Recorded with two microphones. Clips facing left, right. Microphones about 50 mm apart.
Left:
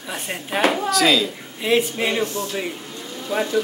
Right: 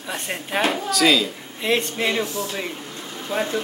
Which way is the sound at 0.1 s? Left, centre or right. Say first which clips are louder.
Even; centre.